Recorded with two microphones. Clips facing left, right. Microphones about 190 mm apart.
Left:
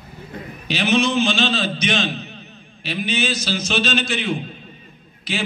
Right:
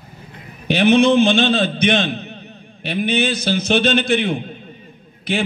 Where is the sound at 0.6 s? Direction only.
55° right (ahead or behind).